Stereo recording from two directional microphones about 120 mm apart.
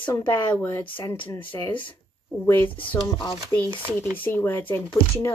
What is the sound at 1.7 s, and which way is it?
Speech, 45° left (ahead or behind).